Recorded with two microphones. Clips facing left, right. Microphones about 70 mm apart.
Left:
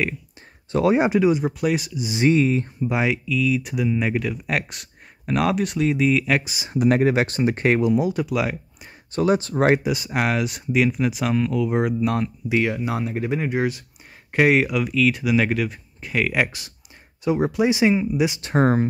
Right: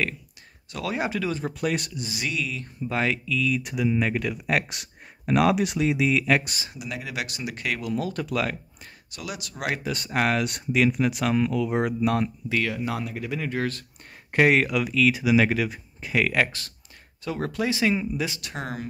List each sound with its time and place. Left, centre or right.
0.7 s speech: left
1.4 s speech: centre
2.0 s speech: left
2.8 s speech: centre
6.7 s speech: left
7.9 s speech: centre
9.1 s speech: left
9.8 s speech: centre
12.4 s speech: centre
14.3 s speech: centre
17.2 s speech: centre
18.4 s speech: left